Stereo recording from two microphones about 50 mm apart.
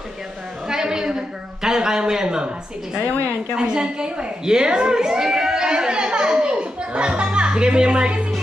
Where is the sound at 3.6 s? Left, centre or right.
Centre.